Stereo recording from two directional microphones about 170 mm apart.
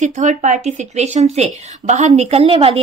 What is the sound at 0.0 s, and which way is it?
A woman's voice, 45° right (ahead or behind).